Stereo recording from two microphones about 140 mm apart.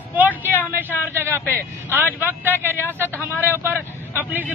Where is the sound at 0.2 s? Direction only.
15° right (ahead or behind).